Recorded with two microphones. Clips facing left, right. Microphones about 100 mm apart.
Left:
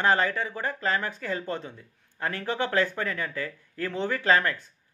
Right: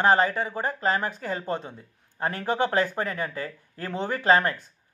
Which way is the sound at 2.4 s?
35° right (ahead or behind).